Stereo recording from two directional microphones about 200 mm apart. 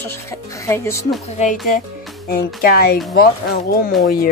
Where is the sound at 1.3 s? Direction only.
35° left (ahead or behind).